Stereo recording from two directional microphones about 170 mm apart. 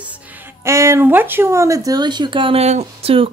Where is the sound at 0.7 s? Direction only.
15° right (ahead or behind).